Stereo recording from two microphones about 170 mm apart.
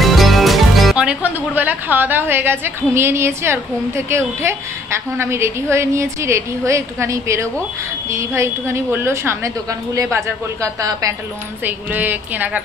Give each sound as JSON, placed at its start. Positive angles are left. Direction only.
{"t": 0.0, "sound": "a woman's voice", "side_deg": 0}